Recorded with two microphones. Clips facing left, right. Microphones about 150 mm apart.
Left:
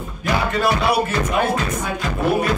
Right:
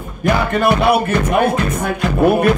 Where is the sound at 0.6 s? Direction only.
55° right (ahead or behind).